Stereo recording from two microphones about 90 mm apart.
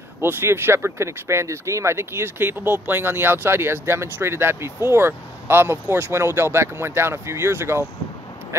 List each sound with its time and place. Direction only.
0.2 s speech: 25° right (ahead or behind)